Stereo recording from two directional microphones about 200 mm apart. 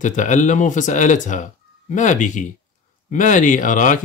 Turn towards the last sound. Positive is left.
turn(degrees=40)  # may be behind; listen again after turning